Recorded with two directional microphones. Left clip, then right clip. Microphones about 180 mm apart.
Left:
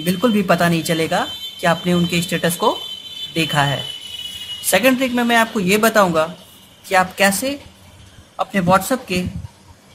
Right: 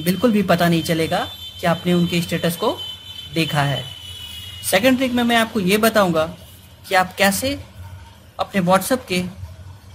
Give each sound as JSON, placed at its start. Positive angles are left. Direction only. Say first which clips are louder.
{"t": 0.0, "sound": "speech", "louder": "left 1 dB", "side_deg": -10}